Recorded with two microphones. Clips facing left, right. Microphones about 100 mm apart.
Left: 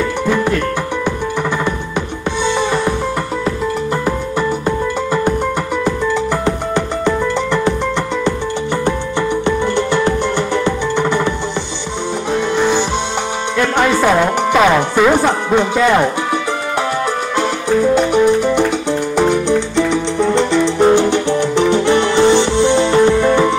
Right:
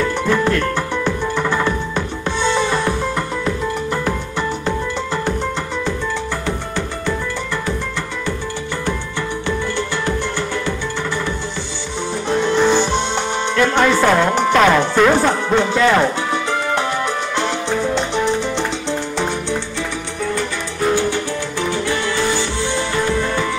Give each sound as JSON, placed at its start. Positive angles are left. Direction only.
{"t": 0.3, "sound": "music", "side_deg": 15}
{"t": 2.4, "sound": "music", "side_deg": 15}
{"t": 6.4, "sound": "music", "side_deg": 20}
{"t": 9.8, "sound": "music", "side_deg": 20}
{"t": 12.3, "sound": "music", "side_deg": 15}
{"t": 13.6, "sound": "speech", "side_deg": 15}
{"t": 17.9, "sound": "music", "side_deg": 10}